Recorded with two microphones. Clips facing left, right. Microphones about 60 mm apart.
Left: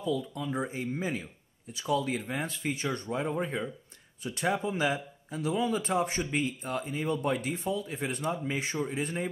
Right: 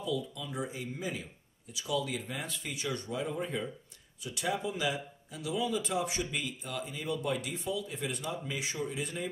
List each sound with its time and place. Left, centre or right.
0.0 s speech: left